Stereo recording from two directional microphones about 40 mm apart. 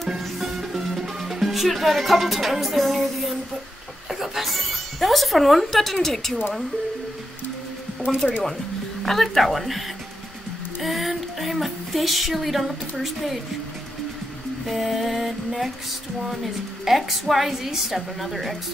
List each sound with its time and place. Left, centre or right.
0.4 s music: centre
4.1 s speech: centre
8.2 s a woman's voice: centre
14.7 s a woman's voice: centre
16.8 s a woman's voice: centre